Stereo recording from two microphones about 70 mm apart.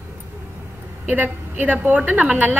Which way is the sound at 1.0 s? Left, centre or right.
Right.